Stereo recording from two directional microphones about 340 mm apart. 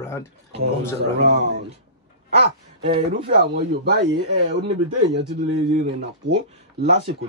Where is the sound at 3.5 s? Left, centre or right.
Right.